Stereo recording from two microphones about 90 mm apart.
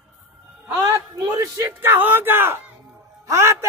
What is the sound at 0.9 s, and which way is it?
Speech, 40° right (ahead or behind).